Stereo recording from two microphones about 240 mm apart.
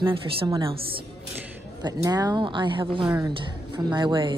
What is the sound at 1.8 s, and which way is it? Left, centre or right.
Speech, centre.